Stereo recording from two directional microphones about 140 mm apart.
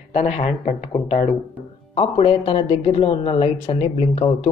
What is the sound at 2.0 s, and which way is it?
Speech, 40° left (ahead or behind).